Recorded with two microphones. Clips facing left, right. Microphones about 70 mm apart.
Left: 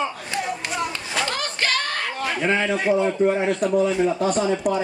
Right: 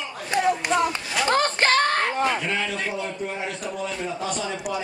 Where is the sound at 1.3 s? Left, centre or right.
Right.